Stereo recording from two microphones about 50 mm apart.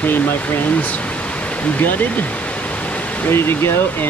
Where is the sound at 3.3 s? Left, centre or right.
Left.